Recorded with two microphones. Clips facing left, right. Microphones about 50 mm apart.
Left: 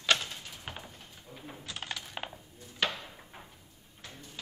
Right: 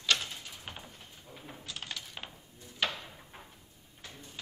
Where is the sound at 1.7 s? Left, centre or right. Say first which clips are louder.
Left 3 dB; centre.